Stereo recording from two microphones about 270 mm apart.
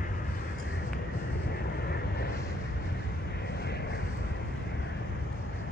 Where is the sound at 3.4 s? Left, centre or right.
Left.